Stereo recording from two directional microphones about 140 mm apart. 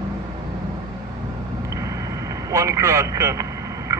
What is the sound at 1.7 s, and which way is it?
Vehicle, 25° right (ahead or behind).